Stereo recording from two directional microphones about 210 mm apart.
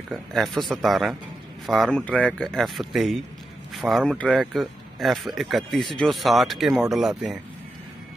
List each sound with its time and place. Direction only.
0.1 s speech: centre (ahead or behind)